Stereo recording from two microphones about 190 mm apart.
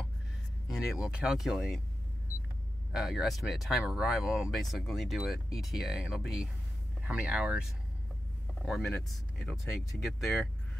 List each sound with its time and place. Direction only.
0.7 s speech: 5° right (ahead or behind)
2.9 s speech: centre (ahead or behind)
8.6 s speech: centre (ahead or behind)